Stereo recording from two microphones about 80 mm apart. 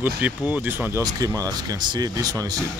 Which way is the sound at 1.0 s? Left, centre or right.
Right.